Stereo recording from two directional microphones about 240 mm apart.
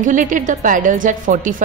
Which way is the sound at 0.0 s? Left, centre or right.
Right.